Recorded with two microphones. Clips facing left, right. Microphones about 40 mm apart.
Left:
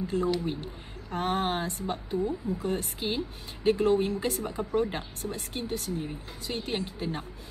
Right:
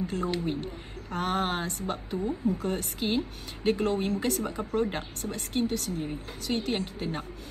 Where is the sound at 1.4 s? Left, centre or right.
Right.